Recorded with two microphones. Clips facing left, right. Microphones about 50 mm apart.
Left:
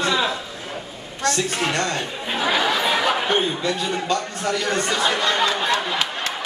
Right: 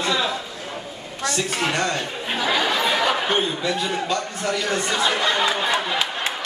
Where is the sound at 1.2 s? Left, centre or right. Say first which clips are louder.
Left 2 dB; centre.